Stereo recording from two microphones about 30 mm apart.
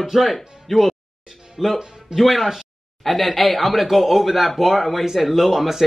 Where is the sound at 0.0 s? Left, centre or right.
Centre.